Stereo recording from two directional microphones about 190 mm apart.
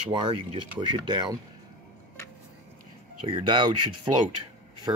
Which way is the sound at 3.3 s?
25° right (ahead or behind).